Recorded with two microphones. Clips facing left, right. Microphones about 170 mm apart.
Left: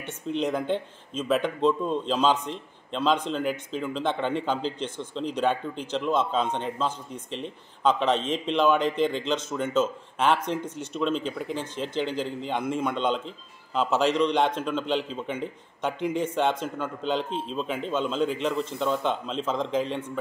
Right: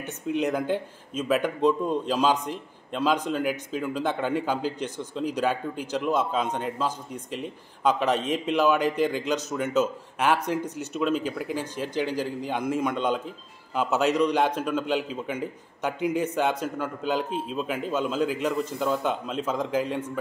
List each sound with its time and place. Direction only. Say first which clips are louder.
0.3 s a man's voice: right 1 dB; 5° right (ahead or behind)